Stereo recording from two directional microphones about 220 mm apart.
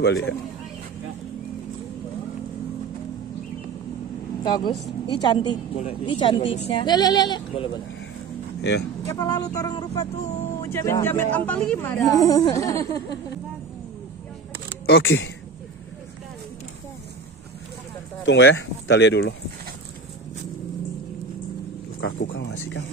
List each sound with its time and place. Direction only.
0.0 s speech: 50° left (ahead or behind)
4.4 s speech: 20° left (ahead or behind)
8.5 s speech: 50° left (ahead or behind)
9.0 s speech: 15° left (ahead or behind)
14.9 s speech: 55° left (ahead or behind)
18.2 s speech: 55° left (ahead or behind)
22.3 s speech: 60° left (ahead or behind)